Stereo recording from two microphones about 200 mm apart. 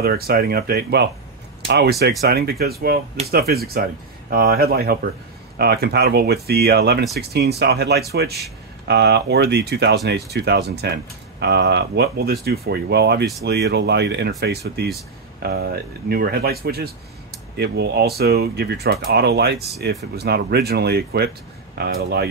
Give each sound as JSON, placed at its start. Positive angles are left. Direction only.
{"t": 0.0, "sound": "speech", "side_deg": -50}